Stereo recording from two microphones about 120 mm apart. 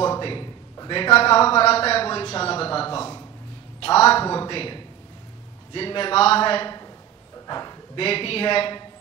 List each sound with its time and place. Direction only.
0.2 s a sound: 45° left (ahead or behind)
0.7 s a man's voice: 45° left (ahead or behind)
4.3 s a man's voice: 40° left (ahead or behind)
7.4 s dog: 35° left (ahead or behind)
8.0 s speech: 50° left (ahead or behind)